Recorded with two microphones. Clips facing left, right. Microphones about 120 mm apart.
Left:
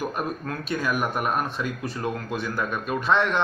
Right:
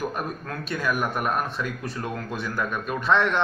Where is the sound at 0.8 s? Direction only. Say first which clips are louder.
Right 1 dB; 10° left (ahead or behind).